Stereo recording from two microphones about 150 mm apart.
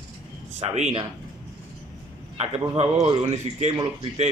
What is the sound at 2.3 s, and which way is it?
A man's voice, 45° right (ahead or behind).